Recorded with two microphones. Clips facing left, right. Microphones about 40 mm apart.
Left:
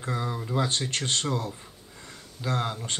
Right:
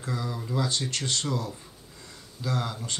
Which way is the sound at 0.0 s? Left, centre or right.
Left.